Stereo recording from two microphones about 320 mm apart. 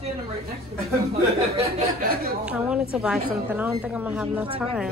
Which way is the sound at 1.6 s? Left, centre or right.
Centre.